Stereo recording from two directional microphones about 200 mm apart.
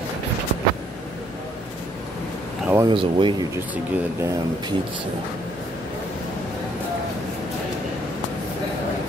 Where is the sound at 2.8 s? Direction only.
25° right (ahead or behind).